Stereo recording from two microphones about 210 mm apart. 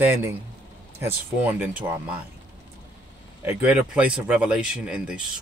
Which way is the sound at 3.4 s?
5° right (ahead or behind).